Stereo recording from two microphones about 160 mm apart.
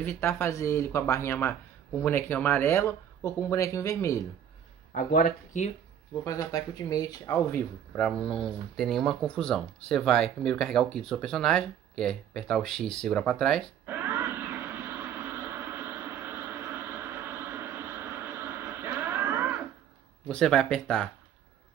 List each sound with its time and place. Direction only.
0.0 s speech: 15° left (ahead or behind)
4.9 s speech: 70° left (ahead or behind)
6.2 s speech: 20° left (ahead or behind)
8.1 s speech: centre (ahead or behind)
13.8 s a sound: 15° right (ahead or behind)
20.2 s speech: 5° left (ahead or behind)